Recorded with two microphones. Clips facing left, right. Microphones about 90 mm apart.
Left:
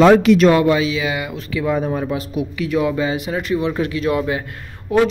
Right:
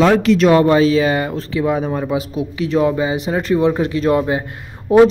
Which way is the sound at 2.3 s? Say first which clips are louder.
Right 1 dB; 25° right (ahead or behind).